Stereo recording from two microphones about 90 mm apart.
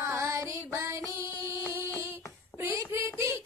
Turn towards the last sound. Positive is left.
turn(degrees=-30)  # may be behind; listen again after turning